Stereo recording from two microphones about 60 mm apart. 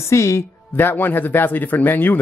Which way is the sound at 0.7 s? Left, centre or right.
Left.